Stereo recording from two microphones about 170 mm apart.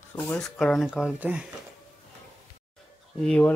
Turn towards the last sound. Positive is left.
turn(degrees=5)  # may be behind; listen again after turning